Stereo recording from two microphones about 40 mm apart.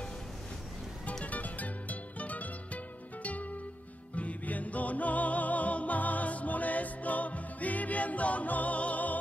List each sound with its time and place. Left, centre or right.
1.2 s music: left